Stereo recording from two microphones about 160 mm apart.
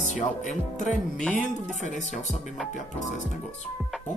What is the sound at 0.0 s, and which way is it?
Speech, 50° left (ahead or behind).